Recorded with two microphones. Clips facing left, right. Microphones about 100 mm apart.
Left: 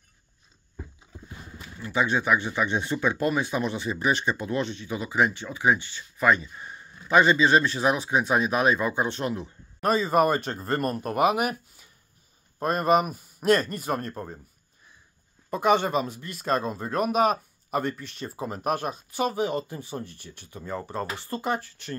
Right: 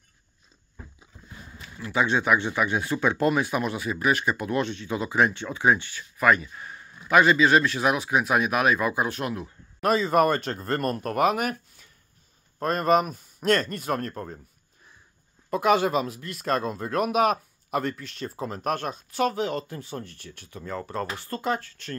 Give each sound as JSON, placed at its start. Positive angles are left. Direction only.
{"t": 2.1, "sound": "speech", "side_deg": -20}
{"t": 3.1, "sound": "speech", "side_deg": 15}
{"t": 3.8, "sound": "speech", "side_deg": 25}
{"t": 6.6, "sound": "a sound", "side_deg": 10}
{"t": 7.1, "sound": "speech", "side_deg": 30}
{"t": 9.4, "sound": "speech", "side_deg": 0}
{"t": 15.5, "sound": "speech", "side_deg": 0}